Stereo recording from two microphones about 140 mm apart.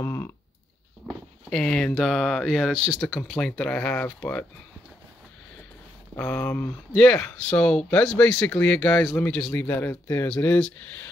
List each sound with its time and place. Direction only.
0.0 s a sound: 20° left (ahead or behind)
1.5 s speech: 5° left (ahead or behind)
3.2 s speech: 10° left (ahead or behind)
6.1 s speech: 15° left (ahead or behind)